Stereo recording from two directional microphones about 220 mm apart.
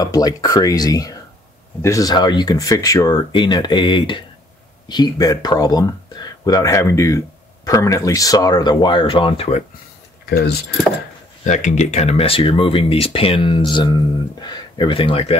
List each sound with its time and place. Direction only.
0.0 s speech: 15° left (ahead or behind)
11.4 s speech: 35° left (ahead or behind)